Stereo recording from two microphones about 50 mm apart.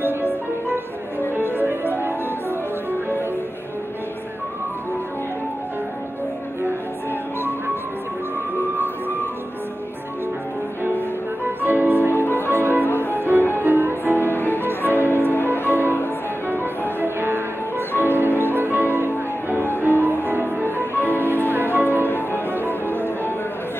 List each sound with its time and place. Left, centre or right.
0.0 s music: right
1.3 s music: right
11.6 s music: right
12.1 s music: left
13.1 s music: right
14.3 s music: left
14.6 s music: right
15.0 s music: left
15.7 s music: right
17.0 s music: right
20.0 s music: right
22.0 s music: left